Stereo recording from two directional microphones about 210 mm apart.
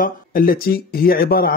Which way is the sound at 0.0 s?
45° left (ahead or behind).